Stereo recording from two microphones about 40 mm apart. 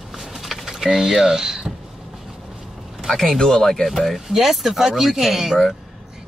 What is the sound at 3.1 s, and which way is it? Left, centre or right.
Speech, centre.